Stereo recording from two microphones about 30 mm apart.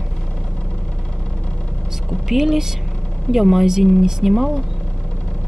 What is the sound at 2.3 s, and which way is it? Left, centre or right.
Speech, centre.